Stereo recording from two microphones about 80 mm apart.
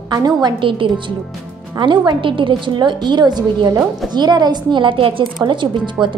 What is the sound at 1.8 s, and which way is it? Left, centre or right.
A woman's voice, right.